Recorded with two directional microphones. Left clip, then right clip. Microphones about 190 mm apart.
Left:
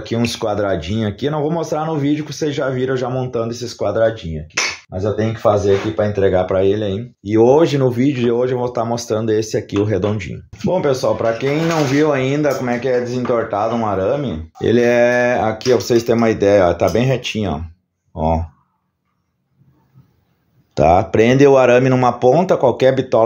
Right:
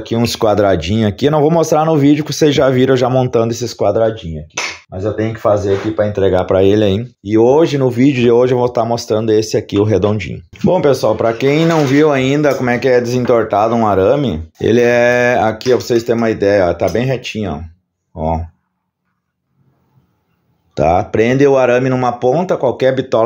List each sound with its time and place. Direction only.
0.0 s speech: 35° right (ahead or behind)
0.4 s speech: 50° right (ahead or behind)
4.9 s speech: 25° right (ahead or behind); by 7.0 s 55° right (ahead or behind)
7.2 s speech: 15° right (ahead or behind)
7.9 s speech: 30° right (ahead or behind)
10.6 s speech: 50° right (ahead or behind)
11.9 s speech: 40° right (ahead or behind)
12.6 s speech: 60° right (ahead or behind)
14.6 s speech: 30° right (ahead or behind)
15.5 s speech: 15° right (ahead or behind)
15.9 s a man's voice: centre (ahead or behind)
20.7 s a man's voice: centre (ahead or behind)